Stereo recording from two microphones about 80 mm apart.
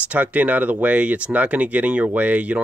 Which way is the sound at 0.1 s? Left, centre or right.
Centre.